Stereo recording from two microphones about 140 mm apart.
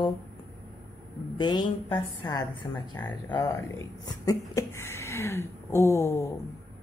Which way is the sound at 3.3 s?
25° left (ahead or behind).